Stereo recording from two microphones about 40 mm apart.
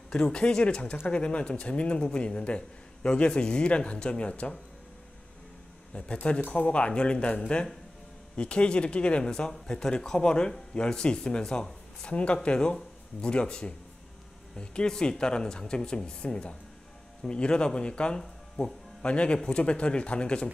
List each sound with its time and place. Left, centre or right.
0.1 s speech: left
5.9 s speech: left
9.3 s a man's voice: centre
12.1 s speech: left